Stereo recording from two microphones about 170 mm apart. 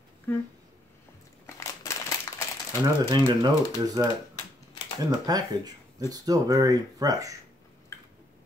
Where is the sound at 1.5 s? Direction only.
20° left (ahead or behind).